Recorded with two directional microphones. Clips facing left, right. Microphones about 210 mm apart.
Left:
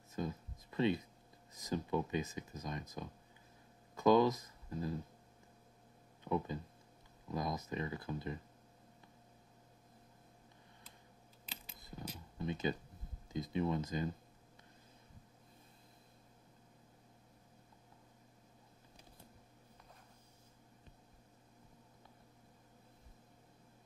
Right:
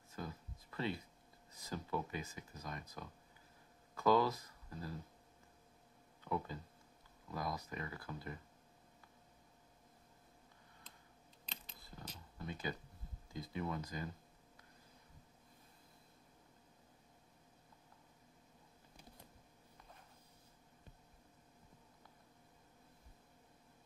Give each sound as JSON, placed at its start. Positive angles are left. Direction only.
{"t": 0.1, "sound": "music", "side_deg": 20}
{"t": 1.5, "sound": "speech", "side_deg": 20}
{"t": 6.2, "sound": "speech", "side_deg": 20}
{"t": 11.4, "sound": "coin", "side_deg": 10}
{"t": 12.4, "sound": "speech", "side_deg": 20}